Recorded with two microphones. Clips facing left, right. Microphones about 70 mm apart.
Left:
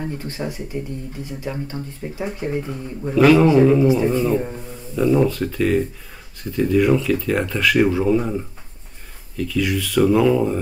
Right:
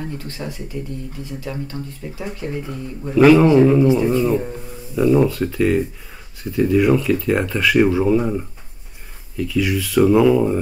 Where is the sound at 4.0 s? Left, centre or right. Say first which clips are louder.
Right 1 dB; centre.